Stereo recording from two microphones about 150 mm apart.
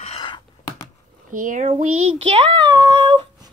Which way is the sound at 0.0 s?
35° left (ahead or behind).